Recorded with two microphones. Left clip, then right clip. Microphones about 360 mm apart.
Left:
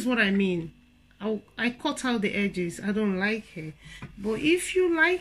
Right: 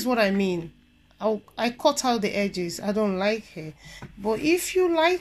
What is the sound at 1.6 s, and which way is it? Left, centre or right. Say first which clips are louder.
Speech: right 7 dB; centre.